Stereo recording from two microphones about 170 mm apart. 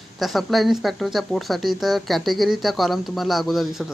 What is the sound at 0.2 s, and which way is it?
Speech, centre (ahead or behind).